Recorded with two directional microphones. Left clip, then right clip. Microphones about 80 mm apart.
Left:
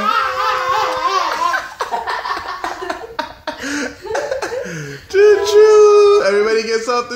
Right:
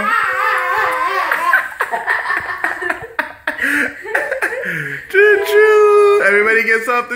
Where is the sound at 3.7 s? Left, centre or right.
Centre.